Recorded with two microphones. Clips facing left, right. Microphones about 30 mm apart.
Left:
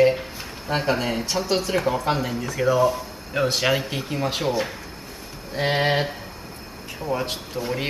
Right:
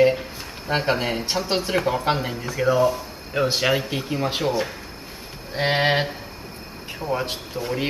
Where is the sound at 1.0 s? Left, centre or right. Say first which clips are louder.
Even; centre.